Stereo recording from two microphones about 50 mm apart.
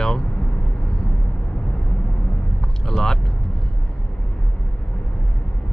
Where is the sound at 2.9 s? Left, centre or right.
Centre.